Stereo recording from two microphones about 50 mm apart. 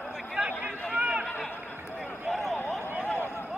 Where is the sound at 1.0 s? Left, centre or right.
Right.